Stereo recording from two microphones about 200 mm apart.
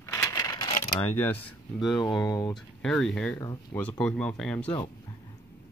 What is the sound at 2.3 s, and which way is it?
Speech, 20° left (ahead or behind).